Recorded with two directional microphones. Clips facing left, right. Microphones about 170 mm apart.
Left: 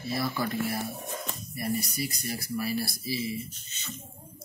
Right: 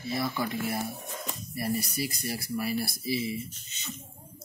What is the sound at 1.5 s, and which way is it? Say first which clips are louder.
Speech: right 1 dB; 35° right (ahead or behind).